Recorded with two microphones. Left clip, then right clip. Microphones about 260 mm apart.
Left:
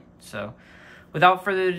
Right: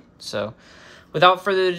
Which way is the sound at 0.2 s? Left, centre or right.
Centre.